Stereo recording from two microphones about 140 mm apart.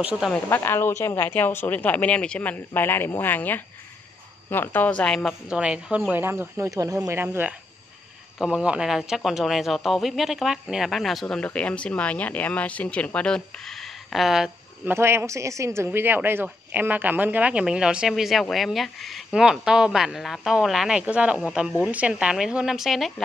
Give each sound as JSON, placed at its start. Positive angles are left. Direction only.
{"t": 0.0, "sound": "speech", "side_deg": -5}
{"t": 0.3, "sound": "a woman's voice", "side_deg": 15}
{"t": 5.5, "sound": "a man's voice", "side_deg": -5}
{"t": 14.9, "sound": "a man's voice", "side_deg": -15}